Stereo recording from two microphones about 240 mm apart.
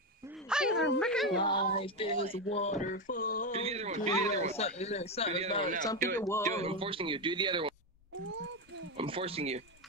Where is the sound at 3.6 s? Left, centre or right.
Right.